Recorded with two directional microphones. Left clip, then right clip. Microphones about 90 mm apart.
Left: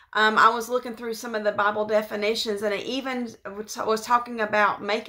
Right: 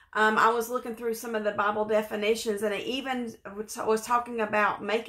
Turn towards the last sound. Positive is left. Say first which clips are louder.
# left 4 dB
turn(degrees=15)  # may be behind; listen again after turning